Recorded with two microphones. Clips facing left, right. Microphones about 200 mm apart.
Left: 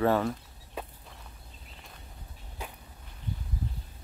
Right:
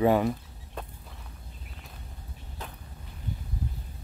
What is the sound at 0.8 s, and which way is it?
Walk, 5° left (ahead or behind).